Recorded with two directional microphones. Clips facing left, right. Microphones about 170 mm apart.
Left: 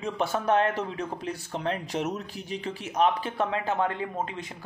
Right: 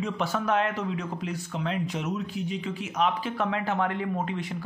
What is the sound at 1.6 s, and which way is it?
Speech, 40° left (ahead or behind).